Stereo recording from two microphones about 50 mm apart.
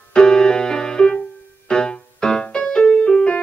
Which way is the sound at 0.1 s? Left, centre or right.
Centre.